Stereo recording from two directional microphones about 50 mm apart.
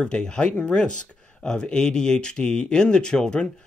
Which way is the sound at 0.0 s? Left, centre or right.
Centre.